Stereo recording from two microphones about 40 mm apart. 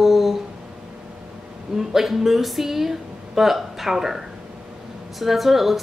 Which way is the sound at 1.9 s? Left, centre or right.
Centre.